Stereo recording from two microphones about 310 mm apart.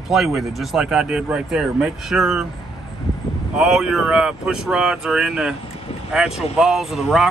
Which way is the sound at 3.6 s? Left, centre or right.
Centre.